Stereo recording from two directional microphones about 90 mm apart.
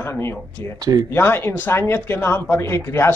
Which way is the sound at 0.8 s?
45° right (ahead or behind).